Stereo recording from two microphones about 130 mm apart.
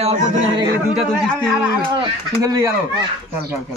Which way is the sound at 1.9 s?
30° right (ahead or behind).